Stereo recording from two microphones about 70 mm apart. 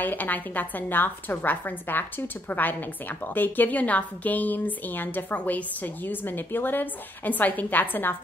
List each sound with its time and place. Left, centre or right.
0.0 s a woman's voice: left